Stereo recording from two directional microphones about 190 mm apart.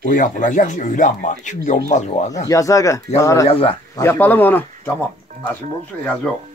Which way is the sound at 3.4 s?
30° left (ahead or behind).